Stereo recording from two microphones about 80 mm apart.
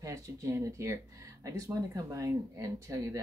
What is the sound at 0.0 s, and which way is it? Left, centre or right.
Speech, right.